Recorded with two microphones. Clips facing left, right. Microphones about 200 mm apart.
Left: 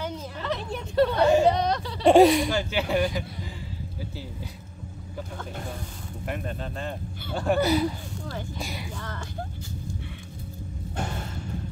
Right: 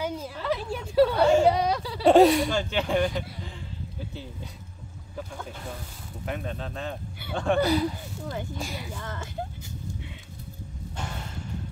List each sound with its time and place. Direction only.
0.0 s a sound: 10° right (ahead or behind)
1.4 s a woman's voice: 5° right (ahead or behind)
2.0 s speech: 10° left (ahead or behind)
6.2 s speech: centre (ahead or behind)
9.0 s speech: 20° right (ahead or behind)